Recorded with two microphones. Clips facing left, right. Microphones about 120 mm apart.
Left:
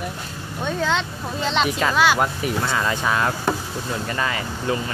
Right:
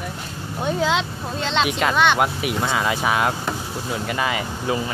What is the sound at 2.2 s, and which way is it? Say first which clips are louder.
Speech: right 1 dB; 10° right (ahead or behind).